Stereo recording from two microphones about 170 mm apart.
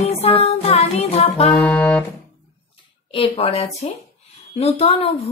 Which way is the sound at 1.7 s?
10° left (ahead or behind).